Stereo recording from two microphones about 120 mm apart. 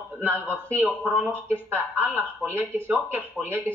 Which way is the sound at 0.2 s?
20° right (ahead or behind).